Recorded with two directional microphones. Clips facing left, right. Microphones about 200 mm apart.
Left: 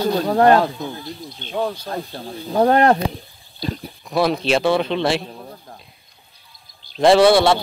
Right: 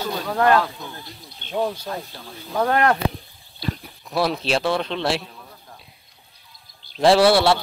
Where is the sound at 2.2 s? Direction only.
35° left (ahead or behind).